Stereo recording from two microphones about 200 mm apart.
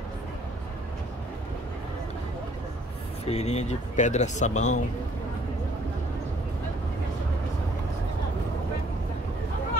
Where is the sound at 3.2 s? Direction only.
35° left (ahead or behind).